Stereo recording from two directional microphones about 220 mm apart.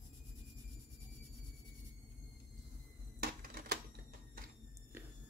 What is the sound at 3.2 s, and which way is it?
Typewriter, 45° right (ahead or behind).